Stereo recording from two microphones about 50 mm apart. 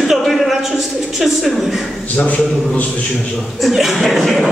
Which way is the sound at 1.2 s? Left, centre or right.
Centre.